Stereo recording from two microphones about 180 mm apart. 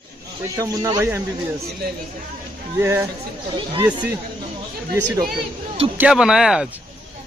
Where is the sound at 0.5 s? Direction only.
20° right (ahead or behind).